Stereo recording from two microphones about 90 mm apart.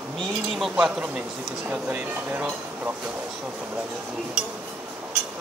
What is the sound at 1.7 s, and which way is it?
Speech, 15° right (ahead or behind).